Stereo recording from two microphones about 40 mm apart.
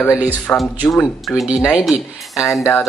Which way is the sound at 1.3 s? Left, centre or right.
Centre.